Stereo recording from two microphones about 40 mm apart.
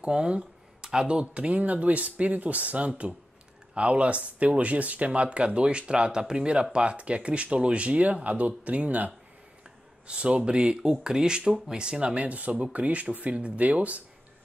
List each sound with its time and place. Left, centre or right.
0.0 s speech: right
10.0 s speech: right
12.2 s speech: right